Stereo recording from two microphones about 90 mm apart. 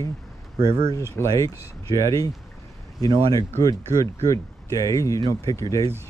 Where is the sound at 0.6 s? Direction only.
30° right (ahead or behind).